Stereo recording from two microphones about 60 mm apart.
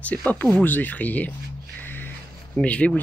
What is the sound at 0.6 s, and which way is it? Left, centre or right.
Speech, left.